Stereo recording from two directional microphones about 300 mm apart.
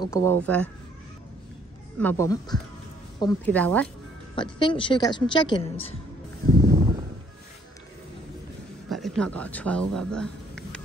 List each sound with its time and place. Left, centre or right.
0.0 s speech: centre
2.0 s a woman's voice: centre
4.4 s speech: centre
6.6 s a sound: centre
8.8 s a man's voice: centre